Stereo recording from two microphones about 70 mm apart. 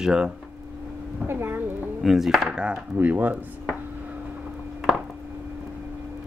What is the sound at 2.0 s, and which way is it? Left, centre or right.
Speech, centre.